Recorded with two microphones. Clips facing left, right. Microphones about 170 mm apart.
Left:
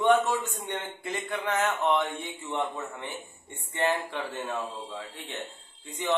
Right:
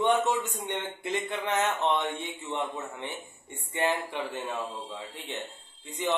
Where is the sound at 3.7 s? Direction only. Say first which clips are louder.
Left 1 dB; 15° right (ahead or behind).